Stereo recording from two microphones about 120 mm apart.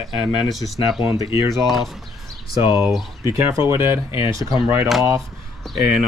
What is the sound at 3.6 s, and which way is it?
Speech, 25° right (ahead or behind).